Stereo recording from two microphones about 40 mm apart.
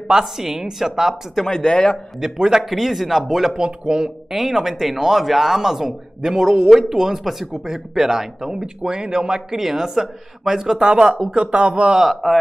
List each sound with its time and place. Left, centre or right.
0.1 s speech: centre
1.6 s a man's voice: left
2.1 s speech: centre
2.6 s speech: centre
3.6 s speech: right
4.3 s speech: centre
10.9 s speech: right
12.0 s speech: centre